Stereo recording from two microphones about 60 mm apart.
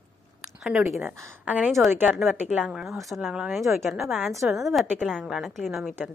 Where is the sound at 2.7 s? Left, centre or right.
Centre.